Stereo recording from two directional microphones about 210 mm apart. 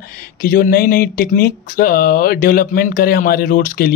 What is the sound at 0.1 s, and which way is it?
Speech, 45° left (ahead or behind).